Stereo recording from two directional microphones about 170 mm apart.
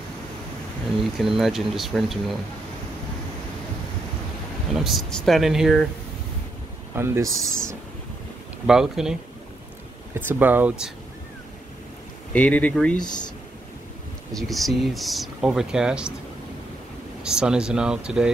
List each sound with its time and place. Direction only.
1.1 s speech: centre (ahead or behind)
4.7 s speech: centre (ahead or behind)
7.0 s speech: 20° right (ahead or behind)
8.6 s speech: 5° right (ahead or behind)
10.2 s speech: 10° right (ahead or behind)
12.3 s speech: 5° left (ahead or behind)
14.3 s speech: centre (ahead or behind)
17.2 s speech: 5° right (ahead or behind)